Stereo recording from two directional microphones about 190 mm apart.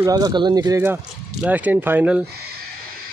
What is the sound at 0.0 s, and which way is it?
Speech, 20° right (ahead or behind).